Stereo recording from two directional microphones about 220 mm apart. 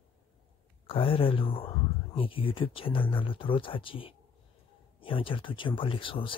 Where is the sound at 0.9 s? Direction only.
25° left (ahead or behind).